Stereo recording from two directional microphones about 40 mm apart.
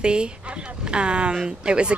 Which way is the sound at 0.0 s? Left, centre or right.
Right.